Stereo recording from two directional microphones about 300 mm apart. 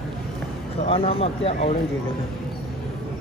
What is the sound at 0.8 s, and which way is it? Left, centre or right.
Speech, centre.